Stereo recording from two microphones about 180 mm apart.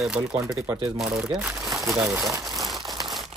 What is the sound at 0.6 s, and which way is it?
Speech, 25° right (ahead or behind).